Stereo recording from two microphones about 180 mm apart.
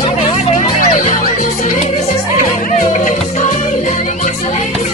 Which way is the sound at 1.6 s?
40° left (ahead or behind).